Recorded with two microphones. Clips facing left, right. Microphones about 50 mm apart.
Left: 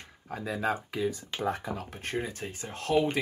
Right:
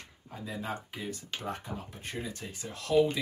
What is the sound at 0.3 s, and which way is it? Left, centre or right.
Speech, left.